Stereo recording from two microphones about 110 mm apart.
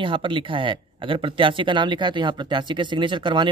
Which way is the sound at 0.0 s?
50° right (ahead or behind).